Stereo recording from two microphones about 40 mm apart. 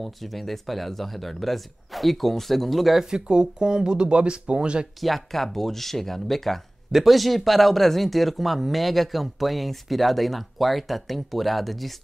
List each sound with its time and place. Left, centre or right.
0.0 s speech: centre
3.0 s speech: centre
5.0 s speech: centre